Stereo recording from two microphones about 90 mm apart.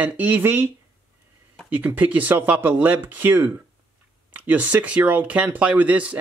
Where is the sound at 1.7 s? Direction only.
20° right (ahead or behind).